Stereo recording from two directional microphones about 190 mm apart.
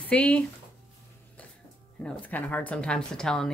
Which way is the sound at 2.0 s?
10° left (ahead or behind).